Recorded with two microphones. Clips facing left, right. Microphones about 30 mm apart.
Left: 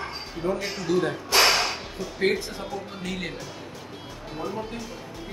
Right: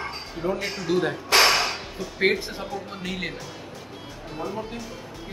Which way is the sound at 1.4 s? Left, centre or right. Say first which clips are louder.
Even; centre.